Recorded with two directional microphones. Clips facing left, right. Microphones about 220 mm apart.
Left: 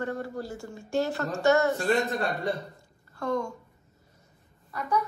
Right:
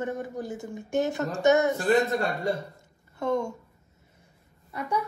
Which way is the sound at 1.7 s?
Centre (ahead or behind).